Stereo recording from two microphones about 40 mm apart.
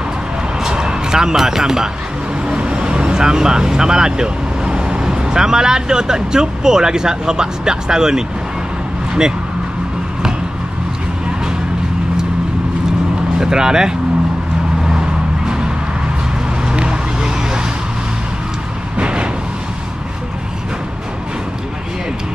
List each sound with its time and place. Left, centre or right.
0.7 s music: centre
2.4 s speech: right
13.4 s speech: centre
14.8 s vehicle: centre
16.6 s vehicle: right
18.9 s a sound: right